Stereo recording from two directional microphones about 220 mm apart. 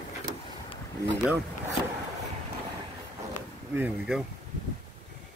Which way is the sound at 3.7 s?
10° right (ahead or behind).